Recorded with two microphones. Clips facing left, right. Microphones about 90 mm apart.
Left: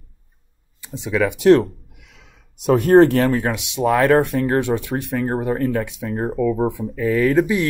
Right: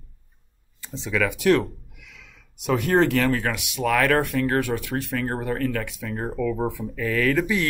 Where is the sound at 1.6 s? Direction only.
40° left (ahead or behind).